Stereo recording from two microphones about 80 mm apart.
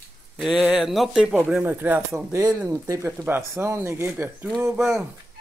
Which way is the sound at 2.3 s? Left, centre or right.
Right.